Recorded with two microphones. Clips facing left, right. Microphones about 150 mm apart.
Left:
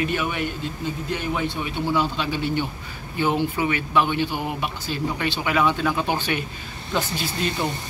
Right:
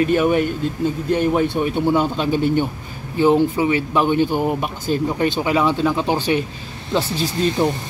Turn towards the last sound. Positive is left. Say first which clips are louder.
# right 7 dB
turn(degrees=-35)  # may be behind; listen again after turning